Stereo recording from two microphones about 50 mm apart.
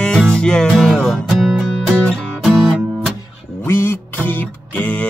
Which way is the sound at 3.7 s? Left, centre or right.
Left.